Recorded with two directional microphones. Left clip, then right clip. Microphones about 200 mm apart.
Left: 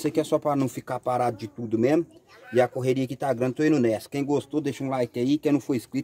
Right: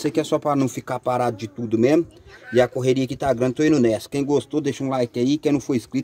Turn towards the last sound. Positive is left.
turn(degrees=0)  # may be behind; listen again after turning